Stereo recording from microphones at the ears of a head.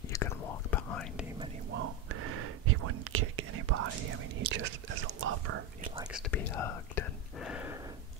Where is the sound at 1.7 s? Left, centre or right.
Right.